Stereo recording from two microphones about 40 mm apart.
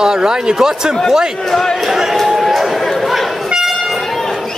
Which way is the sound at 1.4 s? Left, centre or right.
Centre.